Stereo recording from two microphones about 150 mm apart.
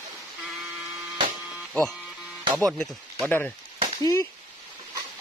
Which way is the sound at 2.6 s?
Centre (ahead or behind).